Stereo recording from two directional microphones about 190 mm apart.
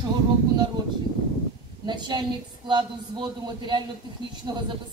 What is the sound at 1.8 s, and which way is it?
A woman's voice, 25° right (ahead or behind).